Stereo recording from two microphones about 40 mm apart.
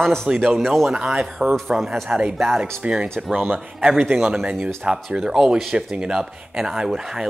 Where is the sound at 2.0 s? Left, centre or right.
Right.